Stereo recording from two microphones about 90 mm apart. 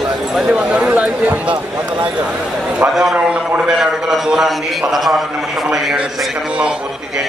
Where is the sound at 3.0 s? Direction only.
10° right (ahead or behind).